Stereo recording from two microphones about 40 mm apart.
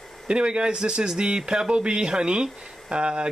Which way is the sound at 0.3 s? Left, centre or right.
Right.